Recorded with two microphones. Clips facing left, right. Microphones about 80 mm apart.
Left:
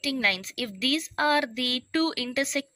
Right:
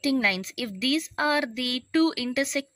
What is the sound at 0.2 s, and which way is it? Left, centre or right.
Speech, centre.